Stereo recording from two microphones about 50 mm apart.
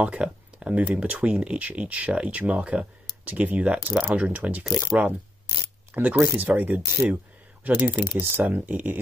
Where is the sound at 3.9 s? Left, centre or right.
Right.